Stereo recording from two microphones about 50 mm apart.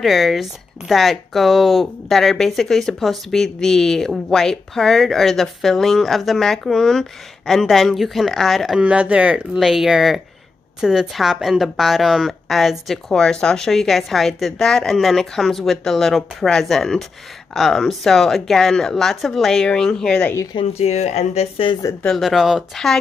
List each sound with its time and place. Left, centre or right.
0.0 s speech: centre
8.7 s speech: right
9.6 s speech: centre
19.6 s speech: centre
21.8 s speech: left
22.2 s speech: centre